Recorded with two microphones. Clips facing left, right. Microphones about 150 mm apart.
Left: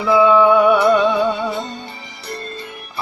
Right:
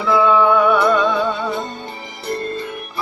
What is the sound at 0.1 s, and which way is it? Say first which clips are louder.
Music: left 2 dB; 15° left (ahead or behind).